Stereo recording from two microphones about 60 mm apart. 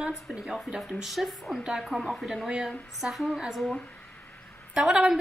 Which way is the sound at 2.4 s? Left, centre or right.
Centre.